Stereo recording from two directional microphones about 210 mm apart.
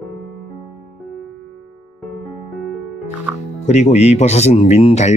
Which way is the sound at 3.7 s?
35° left (ahead or behind).